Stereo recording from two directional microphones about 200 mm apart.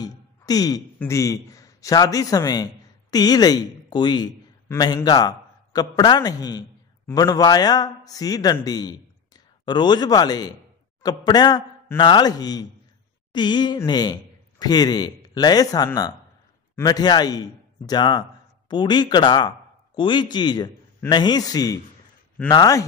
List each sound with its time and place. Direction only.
0.0 s a man's voice: 20° left (ahead or behind)